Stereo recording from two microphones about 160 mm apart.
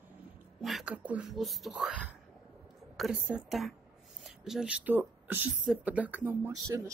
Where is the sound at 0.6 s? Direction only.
Centre (ahead or behind).